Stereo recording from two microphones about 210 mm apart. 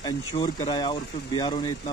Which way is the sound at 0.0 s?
20° left (ahead or behind).